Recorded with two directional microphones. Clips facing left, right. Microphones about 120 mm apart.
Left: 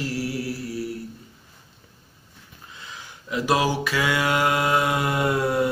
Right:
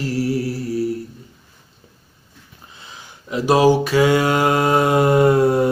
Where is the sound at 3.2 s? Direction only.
30° right (ahead or behind).